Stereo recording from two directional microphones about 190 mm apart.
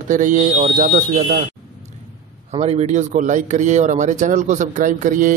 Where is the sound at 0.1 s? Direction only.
45° right (ahead or behind).